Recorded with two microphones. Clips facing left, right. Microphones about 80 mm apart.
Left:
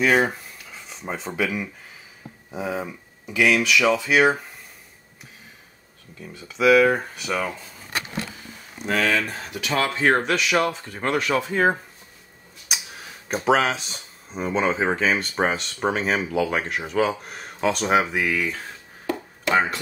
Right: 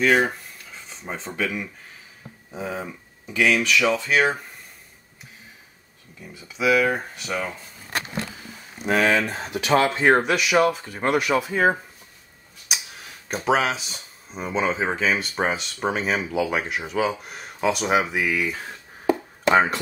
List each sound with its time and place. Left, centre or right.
0.0 s speech: centre
6.3 s speech: centre
8.8 s speech: centre
12.7 s tick: centre
13.3 s speech: centre
19.4 s speech: right